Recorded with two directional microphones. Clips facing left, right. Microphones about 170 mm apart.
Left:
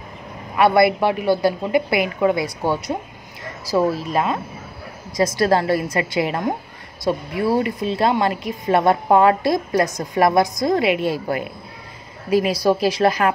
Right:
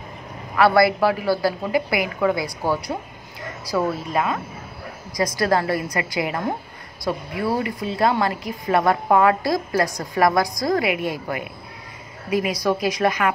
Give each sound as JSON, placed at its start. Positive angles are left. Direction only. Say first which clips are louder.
{"t": 0.6, "sound": "speech", "louder": "left 1 dB", "side_deg": 20}